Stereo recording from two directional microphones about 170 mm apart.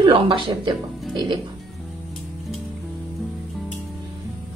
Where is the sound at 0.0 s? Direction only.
30° right (ahead or behind).